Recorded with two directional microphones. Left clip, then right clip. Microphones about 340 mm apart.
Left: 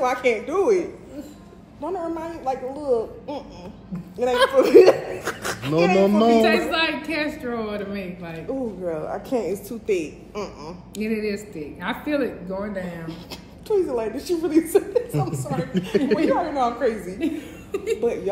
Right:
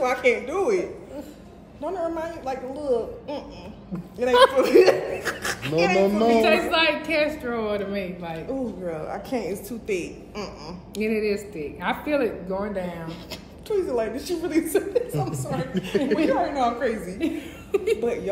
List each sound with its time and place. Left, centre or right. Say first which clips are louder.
0.0 s speech: even; centre
1.9 s speech: even; centre
4.5 s speech: left 4 dB; centre
5.9 s a man's voice: left 3 dB; left
6.4 s a woman's voice: even; centre
8.5 s speech: left 4 dB; centre
11.0 s a woman's voice: right 2 dB; centre
13.7 s speech: left 2 dB; centre
15.9 s a man's voice: left 2 dB; left
16.3 s speech: left 1 dB; centre
17.6 s a sound: right 3 dB; centre
18.0 s speech: left 2 dB; centre